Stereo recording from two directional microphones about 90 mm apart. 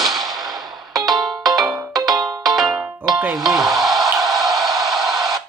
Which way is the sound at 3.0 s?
20° right (ahead or behind).